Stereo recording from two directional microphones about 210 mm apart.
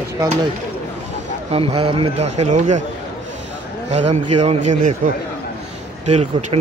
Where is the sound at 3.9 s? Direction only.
30° right (ahead or behind).